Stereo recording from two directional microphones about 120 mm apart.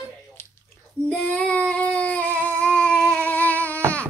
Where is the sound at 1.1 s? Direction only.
10° left (ahead or behind).